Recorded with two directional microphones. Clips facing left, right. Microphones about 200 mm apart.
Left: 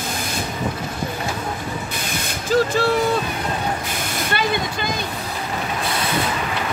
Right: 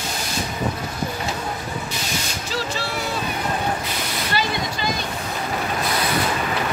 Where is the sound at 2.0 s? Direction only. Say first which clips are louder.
Left 1 dB; 55° left (ahead or behind).